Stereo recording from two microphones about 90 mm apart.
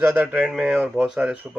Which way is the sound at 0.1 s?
10° right (ahead or behind).